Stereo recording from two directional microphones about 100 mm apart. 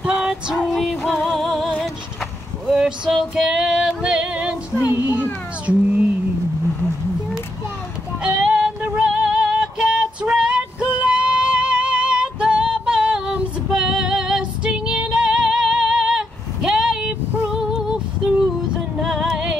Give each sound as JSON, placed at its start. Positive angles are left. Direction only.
{"t": 0.0, "sound": "music", "side_deg": -10}
{"t": 2.6, "sound": "male singing", "side_deg": -5}
{"t": 4.9, "sound": "a sound", "side_deg": -20}
{"t": 8.2, "sound": "music", "side_deg": -10}
{"t": 17.7, "sound": "female singing", "side_deg": -5}
{"t": 18.9, "sound": "music", "side_deg": -5}